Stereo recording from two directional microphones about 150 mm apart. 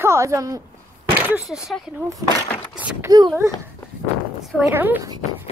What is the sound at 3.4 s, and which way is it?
Speech, 20° right (ahead or behind).